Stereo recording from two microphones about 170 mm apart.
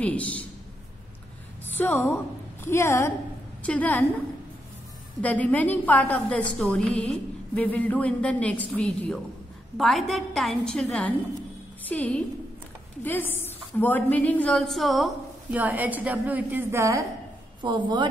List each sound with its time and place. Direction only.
0.0 s a woman's voice: 10° left (ahead or behind)
1.8 s a woman's voice: 10° left (ahead or behind)
5.2 s a woman's voice: 10° left (ahead or behind); by 17.0 s 15° right (ahead or behind)
17.6 s a woman's voice: 25° right (ahead or behind)